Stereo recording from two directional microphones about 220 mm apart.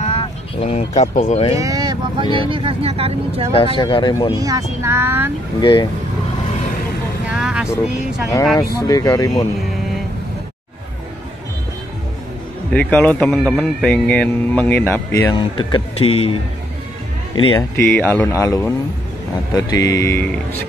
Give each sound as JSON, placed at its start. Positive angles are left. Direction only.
{"t": 0.0, "sound": "speech", "side_deg": 25}
{"t": 1.6, "sound": "vehicle", "side_deg": -15}
{"t": 2.3, "sound": "speech", "side_deg": -25}
{"t": 3.5, "sound": "speech", "side_deg": 25}
{"t": 4.4, "sound": "speech", "side_deg": -15}
{"t": 5.6, "sound": "speech", "side_deg": 20}
{"t": 7.2, "sound": "vehicle", "side_deg": -5}
{"t": 8.7, "sound": "speech", "side_deg": 15}
{"t": 12.7, "sound": "speech", "side_deg": 5}
{"t": 15.3, "sound": "speech", "side_deg": 20}
{"t": 17.6, "sound": "speech", "side_deg": 10}